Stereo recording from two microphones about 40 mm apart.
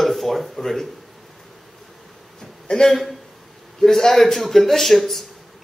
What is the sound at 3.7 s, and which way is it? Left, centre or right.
Speech, centre.